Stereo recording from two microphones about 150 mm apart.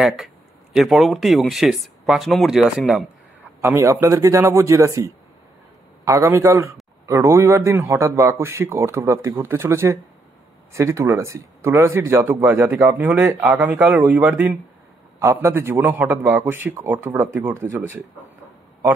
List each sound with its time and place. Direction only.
0.7 s speech: centre (ahead or behind)
3.6 s a man's voice: 20° right (ahead or behind)